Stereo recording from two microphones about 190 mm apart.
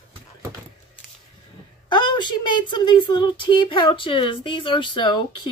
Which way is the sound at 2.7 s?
25° left (ahead or behind).